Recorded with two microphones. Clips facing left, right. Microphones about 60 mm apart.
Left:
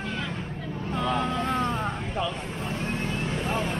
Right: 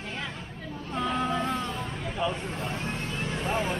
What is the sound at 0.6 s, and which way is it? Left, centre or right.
Hubbub, left.